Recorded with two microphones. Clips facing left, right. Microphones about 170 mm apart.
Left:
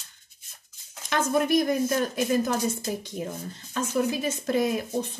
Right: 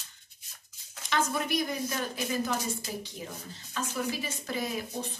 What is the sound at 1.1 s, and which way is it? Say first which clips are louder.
Speech: left 7 dB; 50° left (ahead or behind).